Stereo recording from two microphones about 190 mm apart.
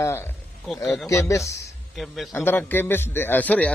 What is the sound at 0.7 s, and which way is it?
Speech, centre (ahead or behind).